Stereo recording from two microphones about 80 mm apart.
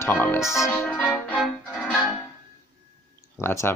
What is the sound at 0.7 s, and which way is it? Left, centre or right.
Music, left.